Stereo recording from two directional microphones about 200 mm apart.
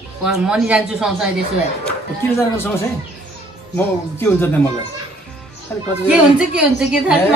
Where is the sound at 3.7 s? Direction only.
10° left (ahead or behind).